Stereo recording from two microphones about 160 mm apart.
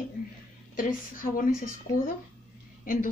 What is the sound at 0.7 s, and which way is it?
A woman's voice, 60° left (ahead or behind).